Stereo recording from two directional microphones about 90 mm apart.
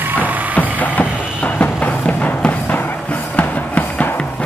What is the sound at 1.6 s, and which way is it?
Music, 15° left (ahead or behind).